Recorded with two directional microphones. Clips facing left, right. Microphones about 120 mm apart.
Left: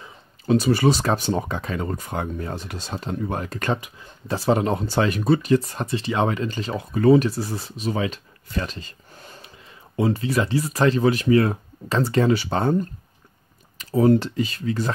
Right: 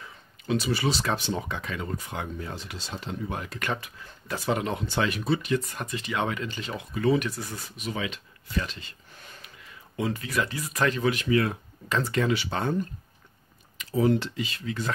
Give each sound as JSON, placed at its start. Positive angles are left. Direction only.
{"t": 0.5, "sound": "speech", "side_deg": 45}
{"t": 13.7, "sound": "speech", "side_deg": 40}